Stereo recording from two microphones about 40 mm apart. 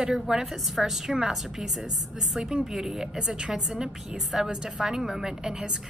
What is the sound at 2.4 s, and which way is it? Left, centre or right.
Speech, centre.